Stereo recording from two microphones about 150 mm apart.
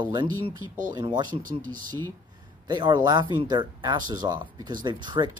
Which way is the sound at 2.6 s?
30° right (ahead or behind).